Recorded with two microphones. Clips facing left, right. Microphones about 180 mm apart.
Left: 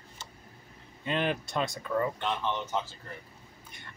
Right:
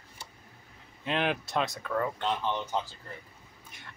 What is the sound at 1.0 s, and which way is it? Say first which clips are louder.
Speech: even; centre (ahead or behind).